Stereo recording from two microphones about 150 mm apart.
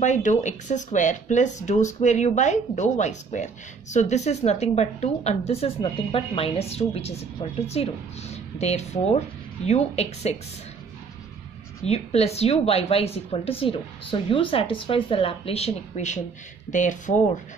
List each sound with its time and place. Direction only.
0.0 s a woman's voice: 50° left (ahead or behind)
11.8 s a woman's voice: 45° left (ahead or behind)